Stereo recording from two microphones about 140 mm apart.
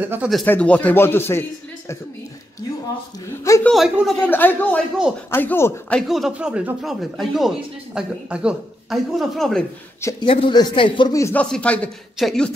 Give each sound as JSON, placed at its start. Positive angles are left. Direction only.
{"t": 0.0, "sound": "speech", "side_deg": -15}
{"t": 0.5, "sound": "speech", "side_deg": 10}
{"t": 3.6, "sound": "a man's voice", "side_deg": 0}
{"t": 4.3, "sound": "speech", "side_deg": 15}
{"t": 6.0, "sound": "a man's voice", "side_deg": 0}
{"t": 10.2, "sound": "a man's voice", "side_deg": 40}
{"t": 11.3, "sound": "a man's voice", "side_deg": 10}